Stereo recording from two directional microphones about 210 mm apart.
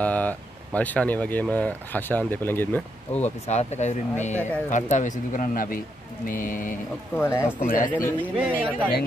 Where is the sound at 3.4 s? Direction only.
30° left (ahead or behind).